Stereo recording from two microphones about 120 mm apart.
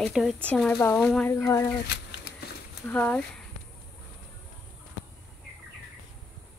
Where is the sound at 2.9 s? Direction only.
15° left (ahead or behind).